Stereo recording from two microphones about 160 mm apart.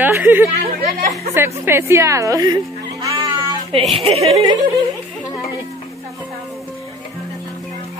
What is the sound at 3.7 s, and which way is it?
Speech, 40° right (ahead or behind).